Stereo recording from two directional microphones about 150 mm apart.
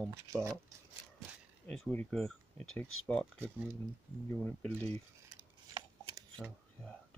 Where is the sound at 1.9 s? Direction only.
5° left (ahead or behind).